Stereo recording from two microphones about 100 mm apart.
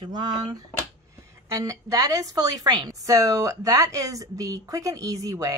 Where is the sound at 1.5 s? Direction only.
35° right (ahead or behind).